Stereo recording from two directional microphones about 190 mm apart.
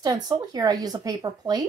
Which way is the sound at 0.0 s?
20° right (ahead or behind).